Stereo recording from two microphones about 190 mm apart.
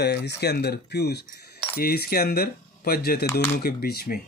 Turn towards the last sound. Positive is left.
turn(degrees=55)  # may be behind; listen again after turning